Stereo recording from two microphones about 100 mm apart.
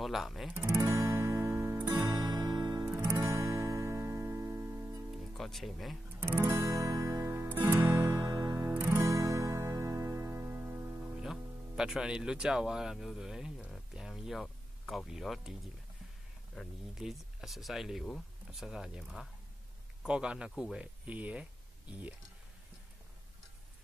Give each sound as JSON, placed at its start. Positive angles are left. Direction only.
{"t": 0.0, "sound": "speech", "side_deg": 0}
{"t": 0.7, "sound": "music", "side_deg": -30}
{"t": 2.1, "sound": "music", "side_deg": -40}
{"t": 2.8, "sound": "music", "side_deg": -25}
{"t": 5.4, "sound": "speech", "side_deg": 0}
{"t": 6.1, "sound": "guitar", "side_deg": -20}
{"t": 8.2, "sound": "music", "side_deg": -35}
{"t": 8.7, "sound": "guitar", "side_deg": -15}
{"t": 9.0, "sound": "music", "side_deg": -35}
{"t": 11.1, "sound": "speech", "side_deg": -5}
{"t": 16.9, "sound": "speech", "side_deg": -5}